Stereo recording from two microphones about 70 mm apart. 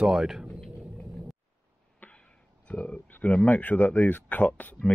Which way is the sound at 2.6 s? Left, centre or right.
Centre.